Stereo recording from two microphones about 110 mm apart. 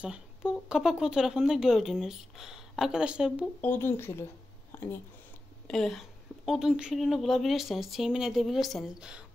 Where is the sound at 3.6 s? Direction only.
20° left (ahead or behind).